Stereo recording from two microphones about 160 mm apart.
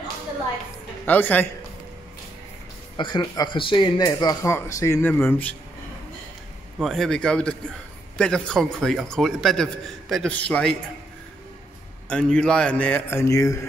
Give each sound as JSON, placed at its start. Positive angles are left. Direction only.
{"t": 1.0, "sound": "a man's voice", "side_deg": 10}
{"t": 3.0, "sound": "speech", "side_deg": 30}
{"t": 6.8, "sound": "a man's voice", "side_deg": 0}
{"t": 12.1, "sound": "a man's voice", "side_deg": 5}